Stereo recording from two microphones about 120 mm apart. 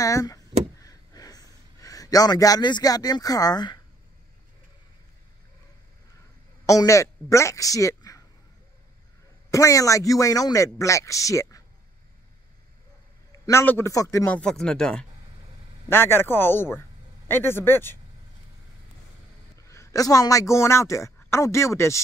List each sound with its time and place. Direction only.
0.0 s a sound: 30° left (ahead or behind)
6.6 s speech: 25° left (ahead or behind)
9.5 s a man's voice: 25° left (ahead or behind)
13.5 s a man's voice: 20° left (ahead or behind)
14.3 s speech: 5° left (ahead or behind)
15.9 s a man's voice: 20° left (ahead or behind)
19.7 s a man's voice: 25° left (ahead or behind)